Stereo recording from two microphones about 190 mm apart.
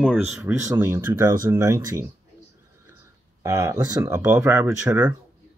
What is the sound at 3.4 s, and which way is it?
Speech, 20° right (ahead or behind).